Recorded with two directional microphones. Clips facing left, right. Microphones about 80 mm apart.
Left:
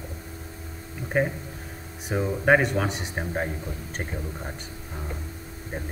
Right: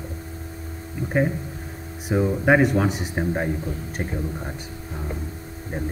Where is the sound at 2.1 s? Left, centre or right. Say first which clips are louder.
Right 2 dB; centre.